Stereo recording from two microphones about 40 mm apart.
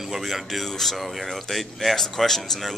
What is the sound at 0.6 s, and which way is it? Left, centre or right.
Speech, centre.